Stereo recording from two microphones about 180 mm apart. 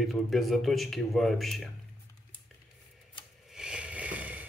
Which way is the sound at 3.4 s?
5° right (ahead or behind).